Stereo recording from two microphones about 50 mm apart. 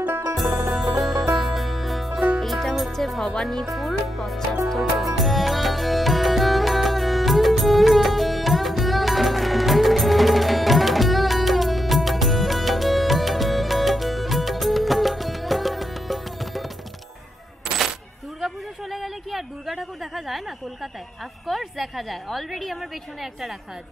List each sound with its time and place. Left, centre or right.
0.0 s music: right
0.4 s music: centre
3.7 s a woman's voice: centre
4.6 s music: centre
18.4 s a sound: centre
21.5 s a woman's voice: centre